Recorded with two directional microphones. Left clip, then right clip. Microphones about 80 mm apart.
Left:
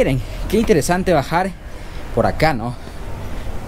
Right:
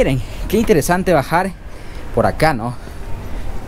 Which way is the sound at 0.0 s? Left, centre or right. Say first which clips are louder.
Right 1 dB; right.